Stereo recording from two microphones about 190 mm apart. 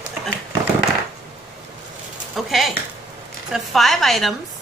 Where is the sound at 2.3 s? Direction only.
Centre (ahead or behind).